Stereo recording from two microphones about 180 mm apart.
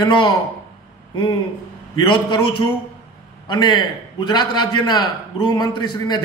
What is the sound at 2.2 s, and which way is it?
A man's voice, 30° left (ahead or behind).